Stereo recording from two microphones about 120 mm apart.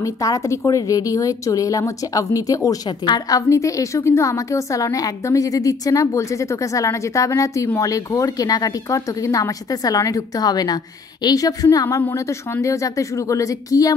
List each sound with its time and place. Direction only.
0.0 s a woman's voice: 30° left (ahead or behind)